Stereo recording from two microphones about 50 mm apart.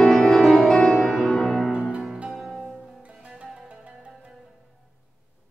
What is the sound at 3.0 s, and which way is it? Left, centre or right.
Music, right.